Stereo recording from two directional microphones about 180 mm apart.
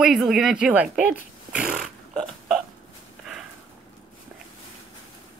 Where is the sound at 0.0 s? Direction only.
5° right (ahead or behind).